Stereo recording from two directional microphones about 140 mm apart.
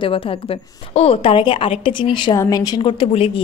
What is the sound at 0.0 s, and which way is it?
A woman's voice, 40° left (ahead or behind).